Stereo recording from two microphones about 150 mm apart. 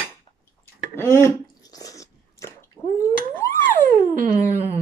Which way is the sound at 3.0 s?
20° left (ahead or behind).